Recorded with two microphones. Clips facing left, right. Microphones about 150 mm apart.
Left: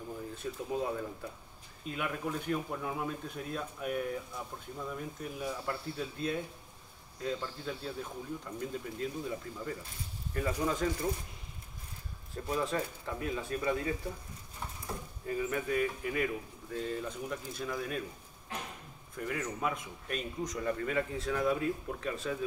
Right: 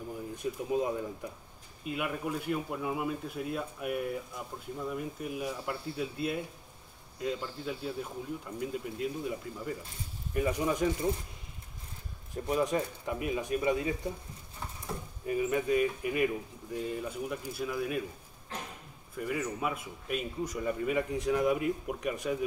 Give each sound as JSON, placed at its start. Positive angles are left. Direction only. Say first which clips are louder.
{"t": 0.3, "sound": "speech", "louder": "right 5 dB", "side_deg": -15}
{"t": 12.4, "sound": "speech", "louder": "right 4 dB", "side_deg": -20}
{"t": 15.2, "sound": "speech", "louder": "right 4 dB", "side_deg": -20}
{"t": 19.1, "sound": "speech", "louder": "right 3 dB", "side_deg": -5}